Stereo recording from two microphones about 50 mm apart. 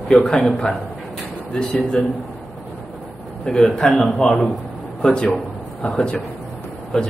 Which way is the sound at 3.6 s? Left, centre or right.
Centre.